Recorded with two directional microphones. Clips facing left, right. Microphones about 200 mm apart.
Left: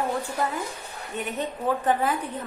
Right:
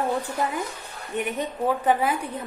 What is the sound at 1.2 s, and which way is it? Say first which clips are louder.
A woman's voice: right 3 dB; 10° right (ahead or behind).